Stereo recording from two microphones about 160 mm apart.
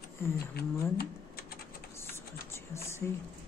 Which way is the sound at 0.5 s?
80° left.